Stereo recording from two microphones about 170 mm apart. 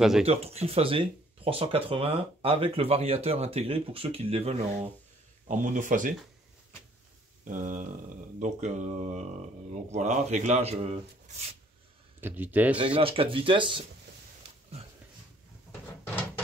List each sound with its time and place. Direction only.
0.2 s speech: 35° right (ahead or behind)
5.5 s speech: 50° right (ahead or behind)
7.4 s speech: 50° right (ahead or behind)
12.2 s speech: 10° right (ahead or behind)
12.7 s speech: 30° right (ahead or behind)